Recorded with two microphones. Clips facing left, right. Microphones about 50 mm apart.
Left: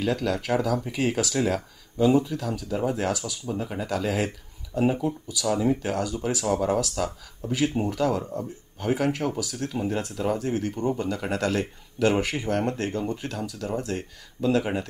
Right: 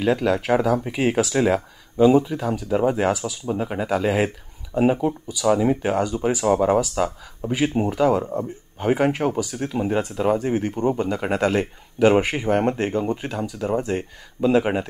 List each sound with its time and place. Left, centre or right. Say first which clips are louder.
0.0 s speech: right 6 dB; right
3.4 s speech: right 6 dB; right
5.4 s speech: right 5 dB; right
9.4 s speech: right 5 dB; centre